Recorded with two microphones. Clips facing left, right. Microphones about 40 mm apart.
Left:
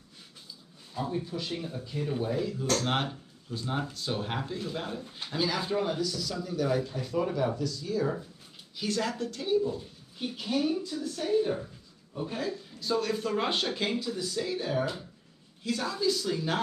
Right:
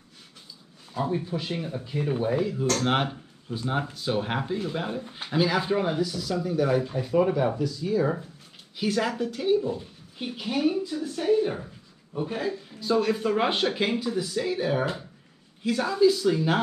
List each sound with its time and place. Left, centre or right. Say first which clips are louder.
0.9 s speech: right 5 dB; right